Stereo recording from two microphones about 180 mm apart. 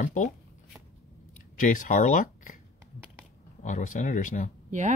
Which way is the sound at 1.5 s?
50° left (ahead or behind).